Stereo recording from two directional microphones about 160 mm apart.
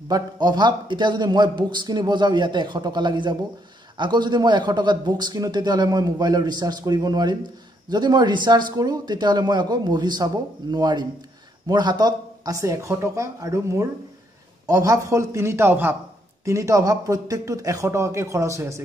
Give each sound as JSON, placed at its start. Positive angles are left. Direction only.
{"t": 0.1, "sound": "a man's voice", "side_deg": -25}